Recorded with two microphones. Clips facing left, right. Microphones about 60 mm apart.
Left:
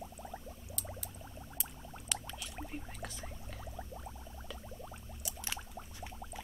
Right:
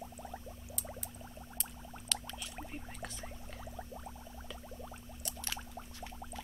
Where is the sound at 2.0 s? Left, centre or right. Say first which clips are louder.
Even; centre.